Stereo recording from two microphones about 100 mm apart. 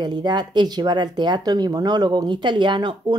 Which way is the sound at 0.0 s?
45° right (ahead or behind).